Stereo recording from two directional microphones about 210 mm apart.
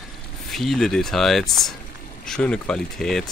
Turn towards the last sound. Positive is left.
turn(degrees=0)  # may be behind; listen again after turning